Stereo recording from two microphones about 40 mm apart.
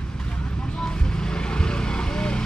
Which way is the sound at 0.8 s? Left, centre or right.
Centre.